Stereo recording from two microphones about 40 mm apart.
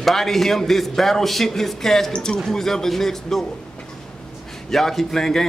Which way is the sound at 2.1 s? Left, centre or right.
Left.